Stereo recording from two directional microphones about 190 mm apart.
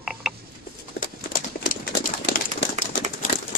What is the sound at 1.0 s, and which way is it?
Clip-clop, 50° left (ahead or behind).